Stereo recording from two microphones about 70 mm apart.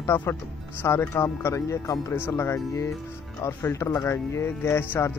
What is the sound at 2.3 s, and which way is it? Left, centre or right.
Speech, left.